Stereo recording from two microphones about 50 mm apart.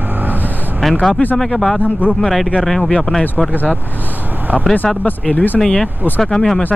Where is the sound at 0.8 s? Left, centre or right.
Centre.